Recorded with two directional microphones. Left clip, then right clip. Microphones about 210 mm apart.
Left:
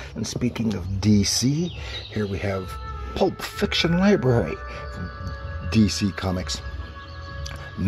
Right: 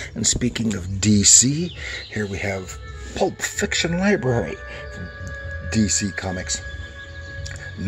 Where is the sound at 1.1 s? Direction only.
45° right (ahead or behind).